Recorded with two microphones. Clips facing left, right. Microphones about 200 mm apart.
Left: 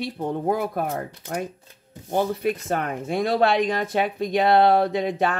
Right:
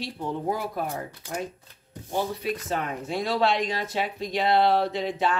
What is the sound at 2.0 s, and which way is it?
Speech, 50° left (ahead or behind).